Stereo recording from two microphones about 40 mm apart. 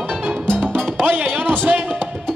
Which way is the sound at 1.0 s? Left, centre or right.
Right.